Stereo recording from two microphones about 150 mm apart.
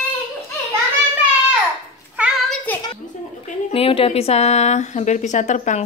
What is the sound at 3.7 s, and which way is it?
A woman's voice, 40° left (ahead or behind).